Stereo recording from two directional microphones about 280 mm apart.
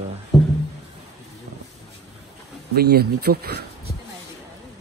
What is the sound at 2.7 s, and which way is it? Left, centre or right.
Speech, right.